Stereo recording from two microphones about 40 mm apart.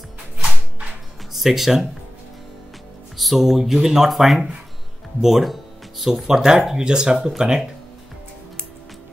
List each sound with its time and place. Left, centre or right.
1.3 s speech: centre
3.2 s speech: centre; by 7.6 s right